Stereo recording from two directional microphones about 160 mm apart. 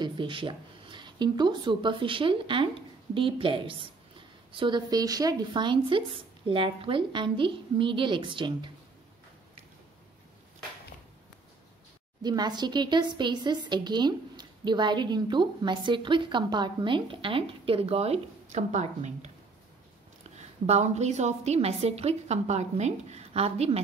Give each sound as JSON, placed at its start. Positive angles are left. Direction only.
{"t": 0.0, "sound": "speech", "side_deg": -30}
{"t": 12.2, "sound": "a woman's voice", "side_deg": -25}
{"t": 20.6, "sound": "a woman's voice", "side_deg": -45}